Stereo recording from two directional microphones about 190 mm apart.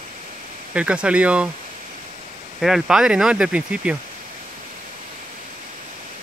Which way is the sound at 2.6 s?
Centre (ahead or behind).